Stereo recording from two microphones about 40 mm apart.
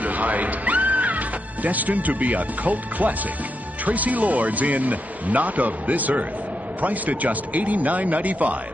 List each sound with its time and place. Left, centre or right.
0.0 s music: right
3.8 s speech: right